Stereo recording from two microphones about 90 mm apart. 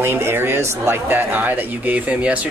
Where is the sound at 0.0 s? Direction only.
25° right (ahead or behind).